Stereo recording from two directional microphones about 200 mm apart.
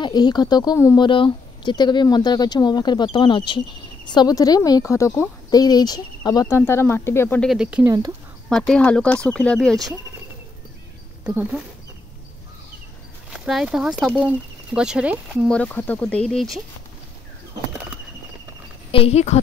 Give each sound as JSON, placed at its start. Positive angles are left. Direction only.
{"t": 0.0, "sound": "a woman's voice", "side_deg": 20}
{"t": 11.2, "sound": "speech", "side_deg": -5}
{"t": 13.3, "sound": "speech", "side_deg": 0}
{"t": 15.5, "sound": "speech", "side_deg": 5}
{"t": 18.9, "sound": "speech", "side_deg": 30}